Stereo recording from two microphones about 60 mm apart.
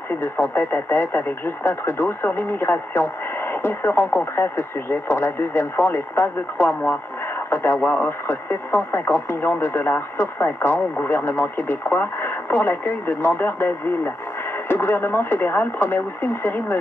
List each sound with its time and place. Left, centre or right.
0.1 s speech: left